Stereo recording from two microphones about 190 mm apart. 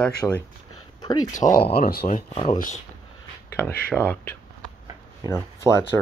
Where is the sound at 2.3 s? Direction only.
30° left (ahead or behind).